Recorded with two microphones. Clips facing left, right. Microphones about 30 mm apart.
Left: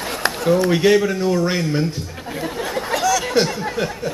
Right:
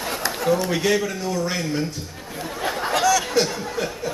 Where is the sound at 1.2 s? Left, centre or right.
Left.